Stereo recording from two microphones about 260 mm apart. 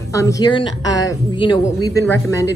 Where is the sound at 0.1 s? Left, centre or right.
Centre.